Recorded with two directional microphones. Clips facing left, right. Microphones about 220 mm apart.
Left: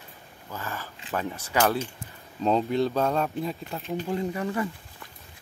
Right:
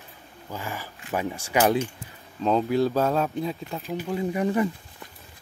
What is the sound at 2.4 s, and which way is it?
Speech, centre (ahead or behind).